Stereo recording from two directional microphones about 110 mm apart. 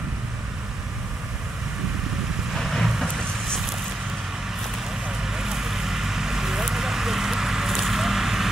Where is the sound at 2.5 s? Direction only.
Centre (ahead or behind).